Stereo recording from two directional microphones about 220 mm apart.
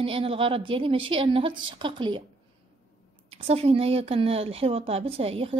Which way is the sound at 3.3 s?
25° right (ahead or behind).